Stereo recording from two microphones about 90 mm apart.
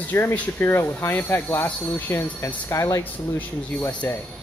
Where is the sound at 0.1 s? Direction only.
25° left (ahead or behind).